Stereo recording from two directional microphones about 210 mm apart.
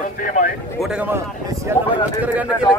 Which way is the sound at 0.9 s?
10° right (ahead or behind).